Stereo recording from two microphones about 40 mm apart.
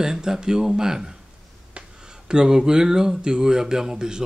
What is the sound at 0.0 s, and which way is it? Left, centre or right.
A man's voice, centre.